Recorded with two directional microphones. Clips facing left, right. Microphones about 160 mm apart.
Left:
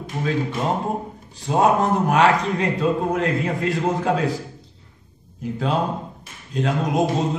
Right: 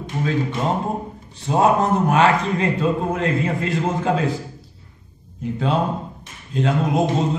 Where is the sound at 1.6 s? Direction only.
Centre (ahead or behind).